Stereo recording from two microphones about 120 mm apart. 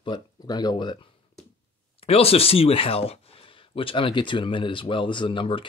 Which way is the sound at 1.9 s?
55° left (ahead or behind).